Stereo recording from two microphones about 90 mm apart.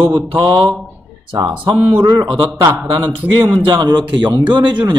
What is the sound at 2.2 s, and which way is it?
Speech, 80° right.